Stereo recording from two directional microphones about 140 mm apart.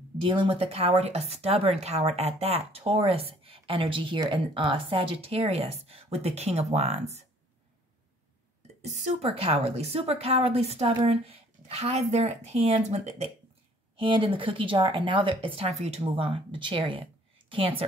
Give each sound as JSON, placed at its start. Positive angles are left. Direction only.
{"t": 0.2, "sound": "speech", "side_deg": -40}
{"t": 8.8, "sound": "speech", "side_deg": -50}
{"t": 13.9, "sound": "speech", "side_deg": -40}
{"t": 16.0, "sound": "a woman's voice", "side_deg": -40}